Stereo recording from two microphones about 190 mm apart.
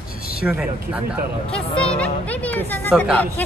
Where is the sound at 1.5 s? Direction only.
5° left (ahead or behind).